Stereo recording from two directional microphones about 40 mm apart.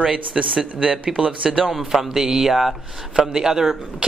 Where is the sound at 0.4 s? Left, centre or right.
Right.